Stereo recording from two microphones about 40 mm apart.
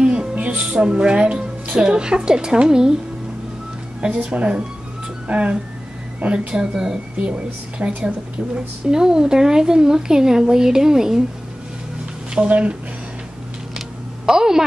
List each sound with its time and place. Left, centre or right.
0.0 s music: right
0.3 s a woman's voice: right
4.0 s a woman's voice: right
6.7 s a woman's voice: centre
7.2 s a woman's voice: right
12.4 s speech: right
13.7 s a sound: centre